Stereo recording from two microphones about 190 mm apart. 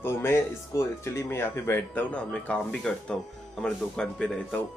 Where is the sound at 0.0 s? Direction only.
15° left (ahead or behind).